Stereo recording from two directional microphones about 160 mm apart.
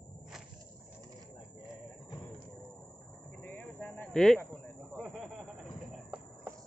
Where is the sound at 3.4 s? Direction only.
10° left (ahead or behind).